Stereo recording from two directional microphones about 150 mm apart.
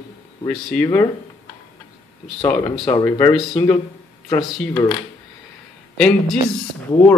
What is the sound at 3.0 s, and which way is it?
Mantra, 15° left (ahead or behind).